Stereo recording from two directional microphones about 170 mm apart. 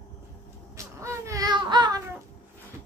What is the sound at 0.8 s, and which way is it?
Baby cry, 15° right (ahead or behind).